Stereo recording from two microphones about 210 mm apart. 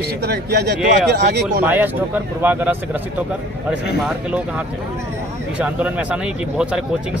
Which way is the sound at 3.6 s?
5° right (ahead or behind).